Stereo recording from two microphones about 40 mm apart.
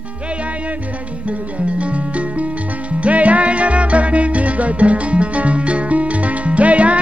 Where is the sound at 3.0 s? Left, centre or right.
Right.